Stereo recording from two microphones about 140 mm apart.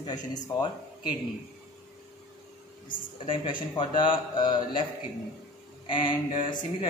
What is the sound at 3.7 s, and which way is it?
Speech, 35° left (ahead or behind).